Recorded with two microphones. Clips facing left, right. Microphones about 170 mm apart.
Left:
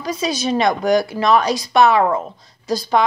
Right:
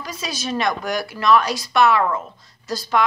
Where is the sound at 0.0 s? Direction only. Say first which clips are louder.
Left 8 dB; 20° left (ahead or behind).